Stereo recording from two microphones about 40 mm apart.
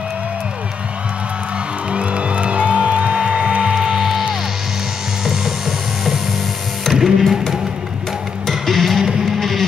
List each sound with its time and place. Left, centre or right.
1.9 s music: right
3.7 s music: centre
8.5 s music: centre
9.0 s music: centre
9.4 s music: centre